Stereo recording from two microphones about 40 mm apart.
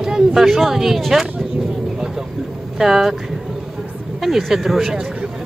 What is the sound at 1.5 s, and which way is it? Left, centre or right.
Vehicle, centre.